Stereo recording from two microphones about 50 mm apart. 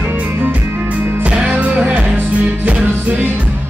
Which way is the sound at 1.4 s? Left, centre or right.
Right.